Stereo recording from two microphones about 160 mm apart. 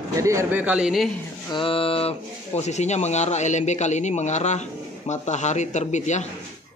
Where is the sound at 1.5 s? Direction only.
35° left (ahead or behind).